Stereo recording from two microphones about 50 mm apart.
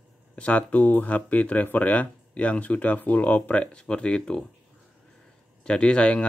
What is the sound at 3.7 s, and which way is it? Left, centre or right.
Speech, centre.